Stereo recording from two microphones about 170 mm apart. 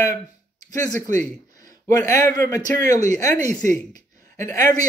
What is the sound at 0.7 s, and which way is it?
Speech, 20° left (ahead or behind).